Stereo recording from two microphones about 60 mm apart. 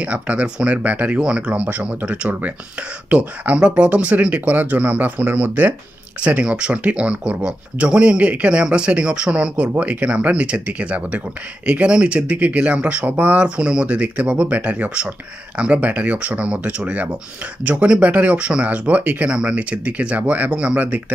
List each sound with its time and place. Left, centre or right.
0.0 s speech: right
6.2 s speech: centre
13.6 s speech: centre